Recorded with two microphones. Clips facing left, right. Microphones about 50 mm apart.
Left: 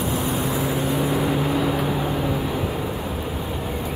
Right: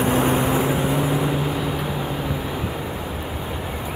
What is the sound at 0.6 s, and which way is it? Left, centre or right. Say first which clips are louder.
Vehicle: right 3 dB; right.